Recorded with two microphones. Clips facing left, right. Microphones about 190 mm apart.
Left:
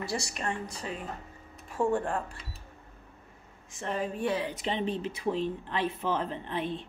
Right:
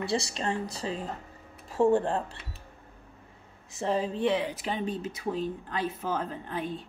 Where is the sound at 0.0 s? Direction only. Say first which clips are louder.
Right 4 dB; 30° right (ahead or behind).